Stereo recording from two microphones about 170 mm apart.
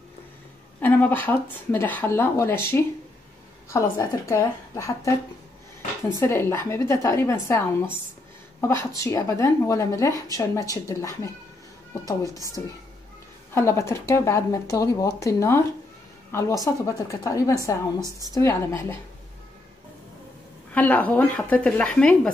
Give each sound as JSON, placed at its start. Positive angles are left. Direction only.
{"t": 0.7, "sound": "speech", "side_deg": 10}
{"t": 6.1, "sound": "a woman's voice", "side_deg": 15}
{"t": 12.6, "sound": "a woman's voice", "side_deg": 15}
{"t": 20.7, "sound": "speech", "side_deg": 10}